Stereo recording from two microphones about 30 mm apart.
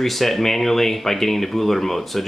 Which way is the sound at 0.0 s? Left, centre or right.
Centre.